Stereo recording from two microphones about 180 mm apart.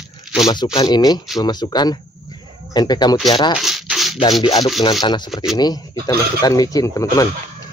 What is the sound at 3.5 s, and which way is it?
Rub, centre (ahead or behind).